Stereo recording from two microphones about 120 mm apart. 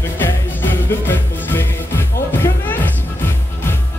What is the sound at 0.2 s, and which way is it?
Music, 15° left (ahead or behind).